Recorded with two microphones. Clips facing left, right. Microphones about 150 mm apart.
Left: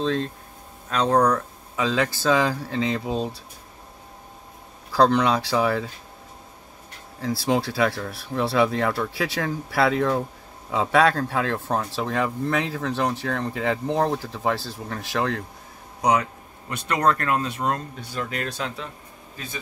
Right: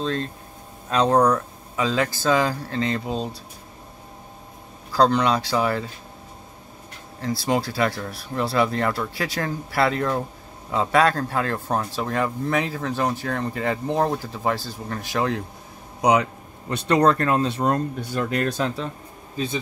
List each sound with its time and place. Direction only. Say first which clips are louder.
0.8 s speech: right 2 dB; 15° right (ahead or behind); by 3.3 s 5° left (ahead or behind)
5.2 s speech: even; 5° left (ahead or behind)
7.2 s speech: even; centre (ahead or behind); by 16.3 s 15° right (ahead or behind)
16.6 s speech: right 4 dB; 30° right (ahead or behind)
17.6 s speech: right 4 dB; 45° right (ahead or behind)
19.3 s speech: right 10 dB; 25° right (ahead or behind)